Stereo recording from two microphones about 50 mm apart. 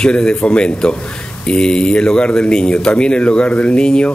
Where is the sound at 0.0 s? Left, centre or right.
Centre.